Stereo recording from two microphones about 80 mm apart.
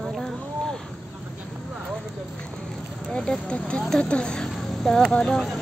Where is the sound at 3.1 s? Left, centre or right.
Centre.